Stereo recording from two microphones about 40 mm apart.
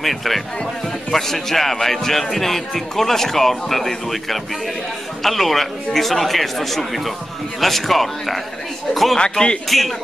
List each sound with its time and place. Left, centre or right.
0.0 s speech: centre
9.2 s speech: left
9.7 s speech: centre